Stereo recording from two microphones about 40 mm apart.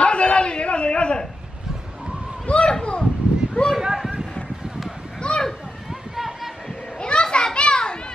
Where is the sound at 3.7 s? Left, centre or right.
Centre.